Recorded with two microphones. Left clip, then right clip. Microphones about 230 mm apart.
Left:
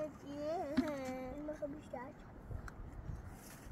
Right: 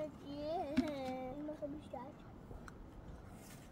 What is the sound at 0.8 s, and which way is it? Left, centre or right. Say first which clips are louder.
Carnatic music: even; centre.